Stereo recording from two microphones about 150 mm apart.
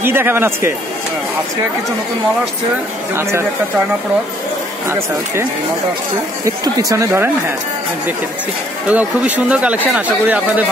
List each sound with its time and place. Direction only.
0.0 s speech: 15° right (ahead or behind)
3.2 s speech: 15° right (ahead or behind)
4.8 s speech: 15° right (ahead or behind)
6.4 s speech: 25° right (ahead or behind)
8.8 s speech: 10° right (ahead or behind)